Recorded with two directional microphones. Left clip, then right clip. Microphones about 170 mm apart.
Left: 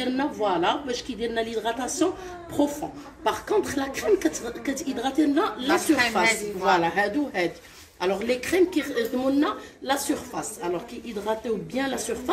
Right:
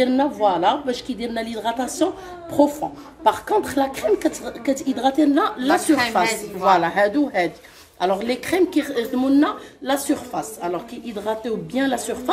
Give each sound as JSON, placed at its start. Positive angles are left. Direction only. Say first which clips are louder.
{"t": 0.2, "sound": "speech", "louder": "right 6 dB", "side_deg": -40}
{"t": 3.3, "sound": "speech", "louder": "right 6 dB", "side_deg": -40}
{"t": 5.7, "sound": "a woman's voice", "louder": "right 3 dB", "side_deg": -10}
{"t": 6.7, "sound": "a woman's voice", "louder": "right 5 dB", "side_deg": -40}